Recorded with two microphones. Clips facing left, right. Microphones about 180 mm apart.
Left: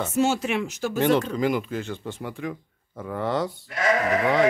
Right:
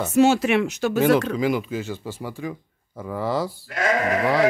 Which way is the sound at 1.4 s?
5° right (ahead or behind).